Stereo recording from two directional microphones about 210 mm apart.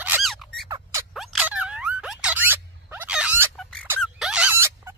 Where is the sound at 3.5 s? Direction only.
5° left (ahead or behind).